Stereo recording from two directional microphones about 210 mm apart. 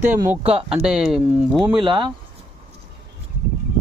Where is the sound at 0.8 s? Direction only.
5° right (ahead or behind).